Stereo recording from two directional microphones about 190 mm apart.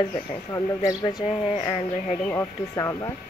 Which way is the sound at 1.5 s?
35° left (ahead or behind).